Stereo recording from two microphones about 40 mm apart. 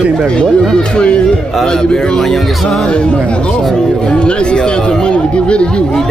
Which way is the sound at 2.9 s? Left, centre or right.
Left.